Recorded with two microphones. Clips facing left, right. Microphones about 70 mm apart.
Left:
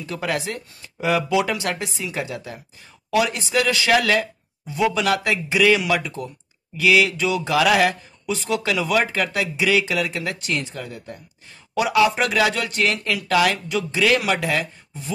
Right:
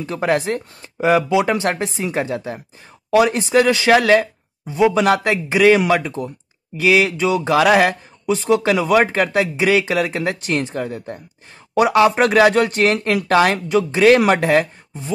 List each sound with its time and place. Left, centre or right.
0.0 s speech: right
0.8 s a sound: right
1.5 s speech: right